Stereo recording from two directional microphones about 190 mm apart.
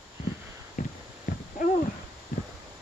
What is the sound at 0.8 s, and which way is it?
Clip-clop, 40° left (ahead or behind).